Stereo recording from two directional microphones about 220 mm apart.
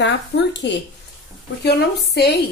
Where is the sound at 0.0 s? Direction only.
55° left (ahead or behind).